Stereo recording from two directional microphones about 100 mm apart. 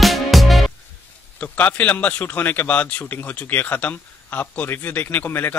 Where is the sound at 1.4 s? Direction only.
15° left (ahead or behind).